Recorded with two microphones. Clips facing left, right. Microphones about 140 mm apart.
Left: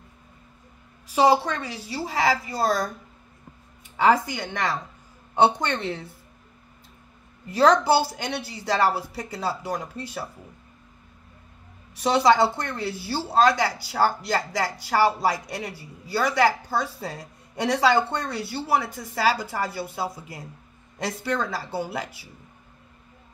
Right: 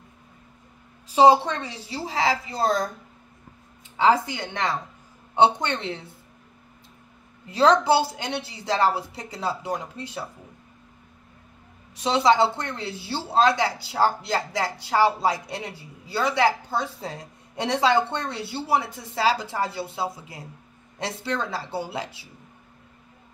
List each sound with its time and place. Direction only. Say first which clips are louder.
1.0 s a woman's voice: right 3 dB; 25° right (ahead or behind)
3.9 s a woman's voice: even; 25° right (ahead or behind)
7.4 s a woman's voice: even; 25° right (ahead or behind)
11.9 s a woman's voice: left 1 dB; 20° right (ahead or behind)